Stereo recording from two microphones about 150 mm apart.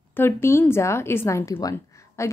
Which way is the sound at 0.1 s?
15° left (ahead or behind).